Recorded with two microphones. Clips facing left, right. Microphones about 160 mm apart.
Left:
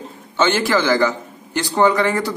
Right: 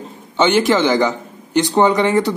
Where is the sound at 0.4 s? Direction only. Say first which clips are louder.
Right 3 dB; 20° right (ahead or behind).